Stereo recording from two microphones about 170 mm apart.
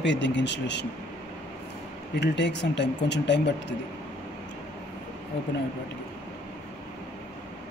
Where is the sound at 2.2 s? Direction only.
90° left.